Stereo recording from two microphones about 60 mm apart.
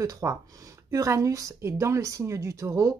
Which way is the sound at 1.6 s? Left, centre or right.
Right.